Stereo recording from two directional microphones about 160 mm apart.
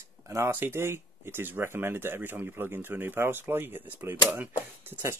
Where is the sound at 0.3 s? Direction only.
15° right (ahead or behind).